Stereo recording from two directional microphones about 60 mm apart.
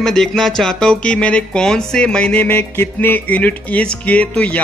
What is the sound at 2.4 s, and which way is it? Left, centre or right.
Music, left.